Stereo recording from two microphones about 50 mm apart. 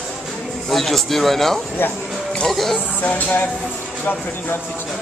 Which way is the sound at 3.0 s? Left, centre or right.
Left.